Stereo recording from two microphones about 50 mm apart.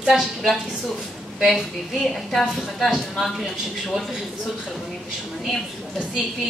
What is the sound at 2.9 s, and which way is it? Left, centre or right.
Speech, centre.